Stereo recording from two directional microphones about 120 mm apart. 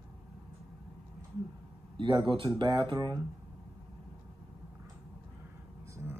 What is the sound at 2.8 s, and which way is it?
Speech, 40° right (ahead or behind).